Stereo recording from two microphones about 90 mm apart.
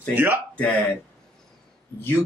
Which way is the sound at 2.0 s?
25° left (ahead or behind).